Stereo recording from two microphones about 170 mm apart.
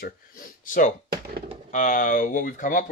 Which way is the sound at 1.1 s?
65° right (ahead or behind).